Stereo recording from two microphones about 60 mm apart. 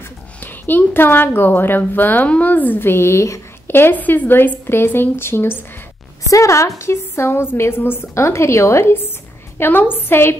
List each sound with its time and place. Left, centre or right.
0.4 s a woman's voice: left
6.3 s a woman's voice: left
8.1 s a woman's voice: left